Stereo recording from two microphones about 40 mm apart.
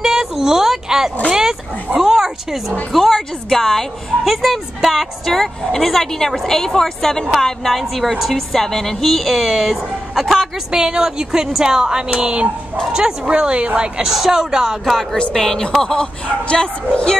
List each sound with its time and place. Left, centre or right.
0.0 s a sound: centre
1.3 s dog: centre
2.0 s a sound: centre
2.9 s speech: centre
4.2 s a woman's voice: centre
5.3 s a woman's voice: centre
10.7 s a woman's voice: centre
15.3 s speech: centre